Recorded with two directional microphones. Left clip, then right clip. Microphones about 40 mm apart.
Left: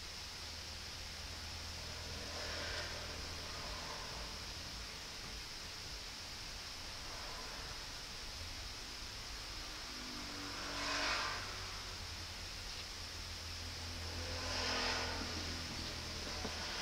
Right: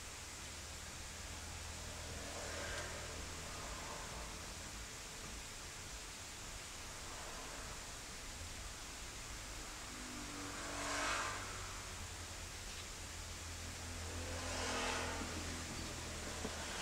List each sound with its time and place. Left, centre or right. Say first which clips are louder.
10.8 s vehicle: left 2 dB; left
14.4 s vehicle: left 3 dB; left